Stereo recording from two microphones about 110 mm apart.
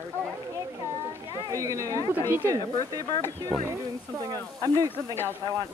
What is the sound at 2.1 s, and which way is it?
Speech, 20° right (ahead or behind).